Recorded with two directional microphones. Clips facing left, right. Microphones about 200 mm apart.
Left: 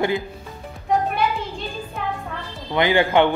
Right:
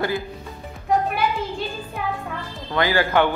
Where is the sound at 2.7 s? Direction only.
20° left (ahead or behind).